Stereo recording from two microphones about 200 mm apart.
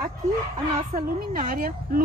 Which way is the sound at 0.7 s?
40° right (ahead or behind).